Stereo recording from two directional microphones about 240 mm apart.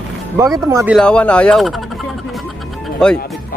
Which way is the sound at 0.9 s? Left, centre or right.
Centre.